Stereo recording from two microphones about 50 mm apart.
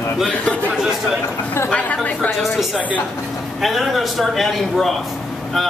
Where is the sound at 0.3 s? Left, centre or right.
Left.